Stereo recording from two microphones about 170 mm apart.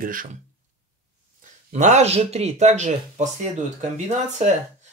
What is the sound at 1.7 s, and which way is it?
Speech, 45° right (ahead or behind).